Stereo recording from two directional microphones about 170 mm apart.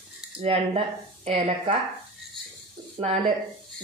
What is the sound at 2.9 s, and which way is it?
Speech, 40° right (ahead or behind).